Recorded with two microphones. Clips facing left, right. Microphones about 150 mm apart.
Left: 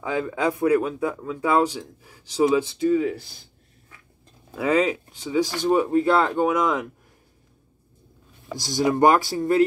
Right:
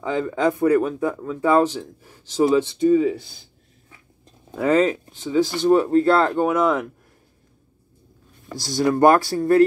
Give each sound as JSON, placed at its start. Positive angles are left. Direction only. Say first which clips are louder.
{"t": 0.0, "sound": "speech", "louder": "right 3 dB", "side_deg": 10}
{"t": 4.6, "sound": "speech", "louder": "right 3 dB", "side_deg": 10}
{"t": 8.5, "sound": "speech", "louder": "right 2 dB", "side_deg": 15}